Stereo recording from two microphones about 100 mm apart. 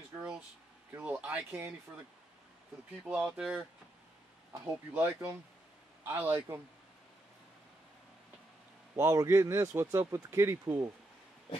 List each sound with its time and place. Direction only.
0.9 s speech: 15° right (ahead or behind)
3.0 s speech: 10° right (ahead or behind)
8.9 s speech: 30° right (ahead or behind)